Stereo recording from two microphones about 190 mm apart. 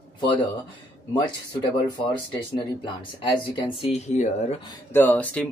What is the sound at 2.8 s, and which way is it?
Speech, 25° left (ahead or behind).